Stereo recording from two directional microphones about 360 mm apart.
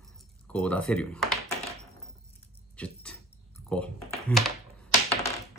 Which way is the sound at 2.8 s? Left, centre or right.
Centre.